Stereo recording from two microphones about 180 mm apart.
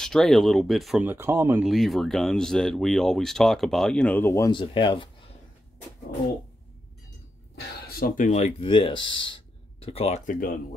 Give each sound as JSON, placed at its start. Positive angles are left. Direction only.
{"t": 0.0, "sound": "speech", "side_deg": 0}
{"t": 1.0, "sound": "speech", "side_deg": -15}
{"t": 1.6, "sound": "speech", "side_deg": 0}
{"t": 4.6, "sound": "speech", "side_deg": 30}
{"t": 7.5, "sound": "speech", "side_deg": 55}
{"t": 8.6, "sound": "speech", "side_deg": 25}